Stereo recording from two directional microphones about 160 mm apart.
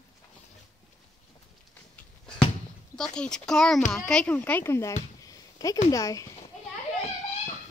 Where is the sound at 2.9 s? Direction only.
5° left (ahead or behind); by 6.3 s 20° left (ahead or behind).